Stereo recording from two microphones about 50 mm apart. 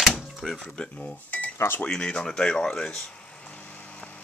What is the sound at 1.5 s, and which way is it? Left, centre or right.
Speech, left.